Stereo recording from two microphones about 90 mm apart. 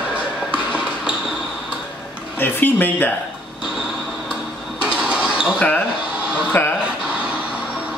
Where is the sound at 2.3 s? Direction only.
25° left (ahead or behind).